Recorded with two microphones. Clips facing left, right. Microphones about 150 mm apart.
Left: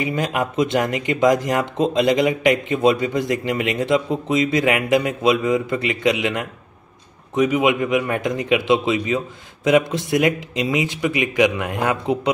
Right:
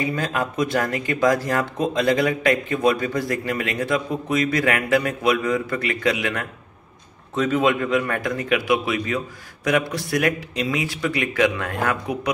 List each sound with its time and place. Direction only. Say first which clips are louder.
0.0 s speech: left 2 dB; 20° left (ahead or behind)